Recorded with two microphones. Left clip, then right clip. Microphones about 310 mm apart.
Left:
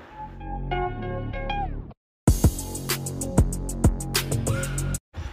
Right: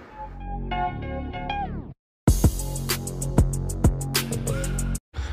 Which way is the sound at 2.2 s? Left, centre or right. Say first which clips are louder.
Even; centre.